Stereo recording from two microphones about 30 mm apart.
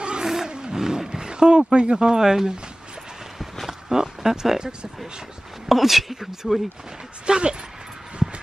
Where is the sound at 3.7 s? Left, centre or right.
Centre.